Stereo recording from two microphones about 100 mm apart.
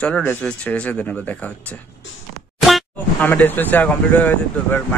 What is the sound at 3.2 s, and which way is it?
Speech, 20° left (ahead or behind).